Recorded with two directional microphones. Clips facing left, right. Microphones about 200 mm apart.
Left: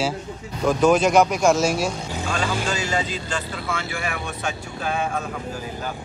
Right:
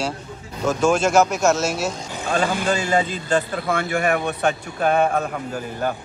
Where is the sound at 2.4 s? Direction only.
55° right (ahead or behind).